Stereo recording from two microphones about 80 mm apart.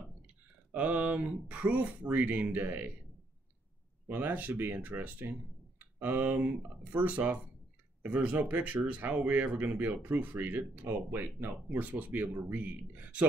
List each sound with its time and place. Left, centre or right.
0.7 s speech: centre
4.1 s speech: right